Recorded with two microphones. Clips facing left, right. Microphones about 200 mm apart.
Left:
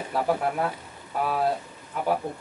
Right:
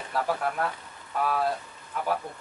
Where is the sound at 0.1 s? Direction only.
15° left (ahead or behind).